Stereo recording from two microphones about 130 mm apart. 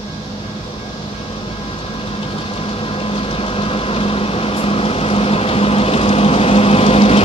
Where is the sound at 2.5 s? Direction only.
45° left (ahead or behind).